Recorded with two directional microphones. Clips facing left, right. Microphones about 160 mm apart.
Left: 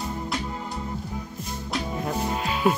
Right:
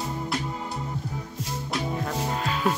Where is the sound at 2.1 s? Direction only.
15° left (ahead or behind).